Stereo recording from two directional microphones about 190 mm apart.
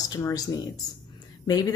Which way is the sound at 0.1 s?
20° left (ahead or behind).